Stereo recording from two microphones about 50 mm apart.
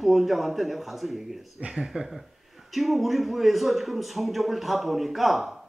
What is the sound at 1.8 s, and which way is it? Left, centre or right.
A man's voice, centre.